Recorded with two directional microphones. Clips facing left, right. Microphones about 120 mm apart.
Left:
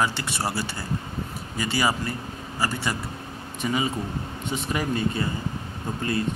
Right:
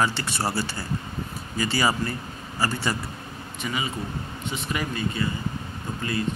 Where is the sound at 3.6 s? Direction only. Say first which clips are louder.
Left 4 dB; 35° left (ahead or behind).